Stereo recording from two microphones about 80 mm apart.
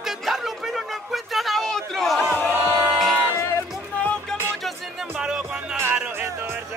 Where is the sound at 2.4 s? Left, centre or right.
Left.